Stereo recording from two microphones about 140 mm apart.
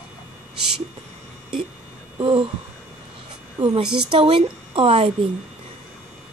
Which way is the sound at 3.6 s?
30° right (ahead or behind).